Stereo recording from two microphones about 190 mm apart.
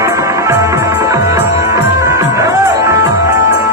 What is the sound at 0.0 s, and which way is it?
Music, 15° right (ahead or behind).